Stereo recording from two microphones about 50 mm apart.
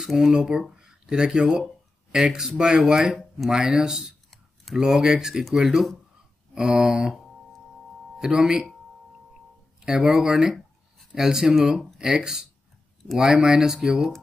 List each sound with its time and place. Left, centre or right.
0.0 s speech: centre
8.2 s speech: centre
9.8 s speech: centre